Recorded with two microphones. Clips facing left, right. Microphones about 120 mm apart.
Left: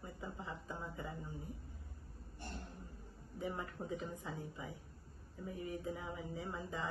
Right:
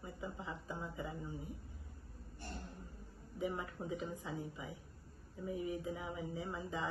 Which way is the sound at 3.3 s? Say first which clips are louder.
Right 2 dB; 10° right (ahead or behind).